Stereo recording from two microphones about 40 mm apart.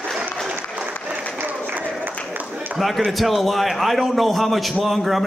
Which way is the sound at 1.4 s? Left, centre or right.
Right.